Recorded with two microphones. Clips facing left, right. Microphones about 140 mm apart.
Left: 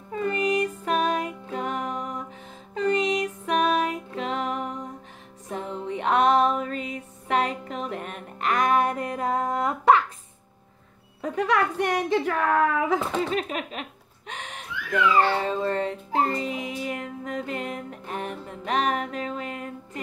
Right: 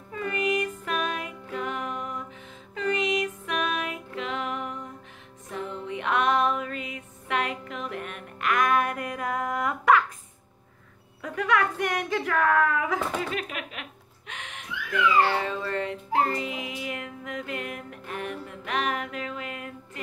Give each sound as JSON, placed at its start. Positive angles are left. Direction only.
{"t": 0.1, "sound": "music", "side_deg": 30}
{"t": 11.2, "sound": "speech", "side_deg": 35}
{"t": 15.1, "sound": "music", "side_deg": 35}